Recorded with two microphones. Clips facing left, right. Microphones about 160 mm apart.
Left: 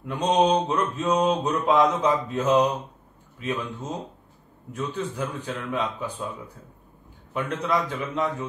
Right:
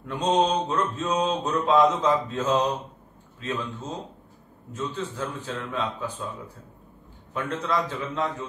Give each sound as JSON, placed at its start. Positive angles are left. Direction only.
{"t": 0.0, "sound": "mantra", "side_deg": 15}
{"t": 7.3, "sound": "mantra", "side_deg": 15}